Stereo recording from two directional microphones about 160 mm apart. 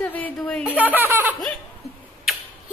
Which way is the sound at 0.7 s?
10° right (ahead or behind).